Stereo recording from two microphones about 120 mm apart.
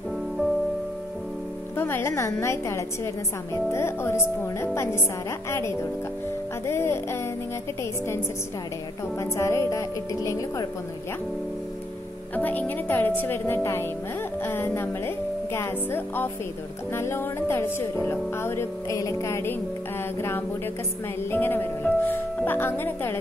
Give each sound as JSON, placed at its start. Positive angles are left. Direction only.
{"t": 1.8, "sound": "speech", "side_deg": 20}
{"t": 9.2, "sound": "speech", "side_deg": 25}
{"t": 12.4, "sound": "a woman's voice", "side_deg": 15}